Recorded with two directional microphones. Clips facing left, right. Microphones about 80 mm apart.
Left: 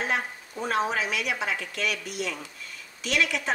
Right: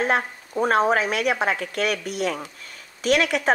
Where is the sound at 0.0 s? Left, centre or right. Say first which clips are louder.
Right 6 dB; right.